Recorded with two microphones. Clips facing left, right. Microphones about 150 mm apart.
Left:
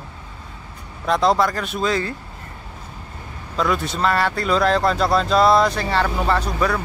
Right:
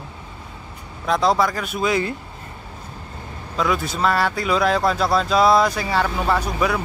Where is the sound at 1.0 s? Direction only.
5° right (ahead or behind).